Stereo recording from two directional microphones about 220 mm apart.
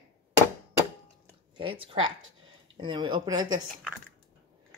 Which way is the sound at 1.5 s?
25° right (ahead or behind).